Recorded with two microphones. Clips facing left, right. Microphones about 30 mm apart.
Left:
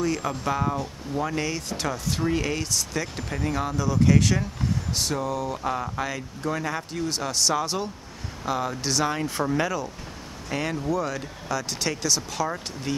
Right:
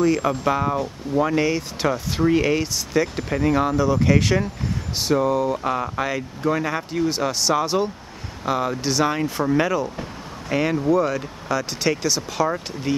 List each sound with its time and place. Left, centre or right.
0.0 s speech: centre